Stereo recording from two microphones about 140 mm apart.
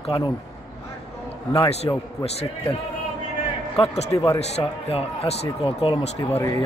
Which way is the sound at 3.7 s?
50° left (ahead or behind).